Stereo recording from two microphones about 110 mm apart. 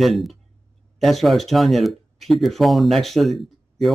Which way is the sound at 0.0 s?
Centre (ahead or behind).